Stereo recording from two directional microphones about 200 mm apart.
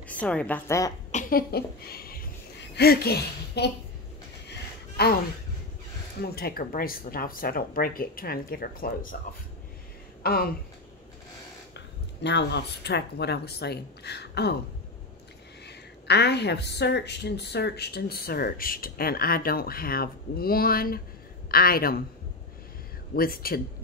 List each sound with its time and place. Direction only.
0.1 s a woman's voice: 5° left (ahead or behind)
1.1 s speech: 50° left (ahead or behind)
4.5 s a sound: 50° left (ahead or behind)
6.2 s a woman's voice: 50° left (ahead or behind)
10.2 s a woman's voice: 50° left (ahead or behind)
11.7 s speech: 60° left (ahead or behind)
15.6 s a woman's voice: 55° left (ahead or behind)
23.1 s a woman's voice: 45° left (ahead or behind)